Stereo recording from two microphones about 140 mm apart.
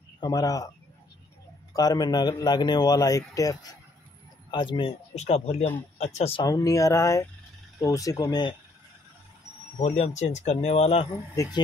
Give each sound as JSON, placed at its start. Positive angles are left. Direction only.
{"t": 0.2, "sound": "a man's voice", "side_deg": 25}
{"t": 1.7, "sound": "a man's voice", "side_deg": 25}
{"t": 5.1, "sound": "speech", "side_deg": 50}
{"t": 6.4, "sound": "a man's voice", "side_deg": 25}
{"t": 9.8, "sound": "speech", "side_deg": 50}